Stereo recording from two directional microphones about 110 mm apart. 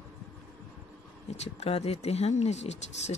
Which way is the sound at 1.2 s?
85° left.